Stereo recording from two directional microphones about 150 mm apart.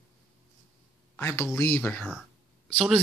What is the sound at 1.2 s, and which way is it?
Speech, 15° left (ahead or behind).